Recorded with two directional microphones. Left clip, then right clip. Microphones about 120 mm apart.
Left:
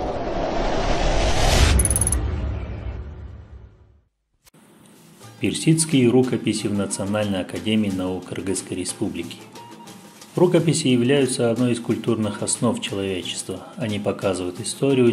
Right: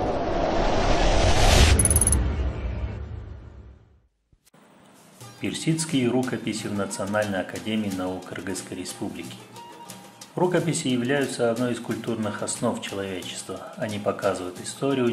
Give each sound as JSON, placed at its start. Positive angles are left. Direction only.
{"t": 0.0, "sound": "a sound", "side_deg": 0}
{"t": 5.4, "sound": "speech", "side_deg": 40}
{"t": 10.3, "sound": "speech", "side_deg": 45}